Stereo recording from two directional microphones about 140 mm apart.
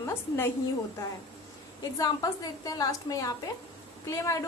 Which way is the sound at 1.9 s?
25° left (ahead or behind).